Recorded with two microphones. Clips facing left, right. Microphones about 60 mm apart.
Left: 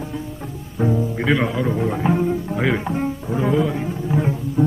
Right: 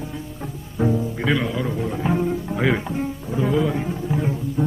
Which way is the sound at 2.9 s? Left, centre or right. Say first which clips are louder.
Left 3 dB; left.